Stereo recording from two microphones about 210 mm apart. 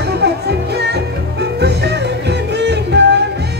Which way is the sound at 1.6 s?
55° right (ahead or behind).